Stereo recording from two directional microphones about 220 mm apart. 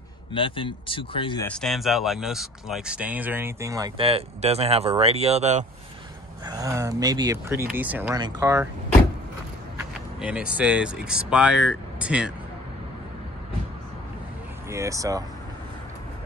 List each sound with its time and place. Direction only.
0.3 s speech: 25° left (ahead or behind)
1.5 s speech: centre (ahead or behind); by 5.7 s 30° right (ahead or behind)
6.4 s speech: 15° right (ahead or behind)
9.8 s speech: 5° right (ahead or behind)
14.7 s speech: 15° right (ahead or behind)